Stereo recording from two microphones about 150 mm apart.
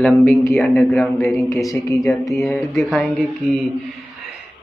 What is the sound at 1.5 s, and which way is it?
Speech, 20° left (ahead or behind).